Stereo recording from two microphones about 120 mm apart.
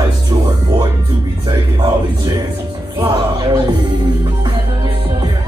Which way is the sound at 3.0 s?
35° right (ahead or behind).